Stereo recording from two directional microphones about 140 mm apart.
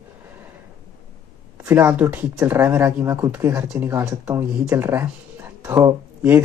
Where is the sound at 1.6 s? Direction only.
15° right (ahead or behind).